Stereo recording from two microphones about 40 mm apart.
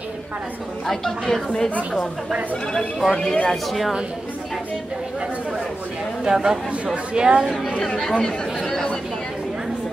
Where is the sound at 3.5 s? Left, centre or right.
Centre.